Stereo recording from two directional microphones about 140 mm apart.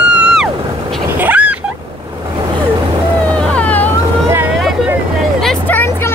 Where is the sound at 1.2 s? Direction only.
10° right (ahead or behind).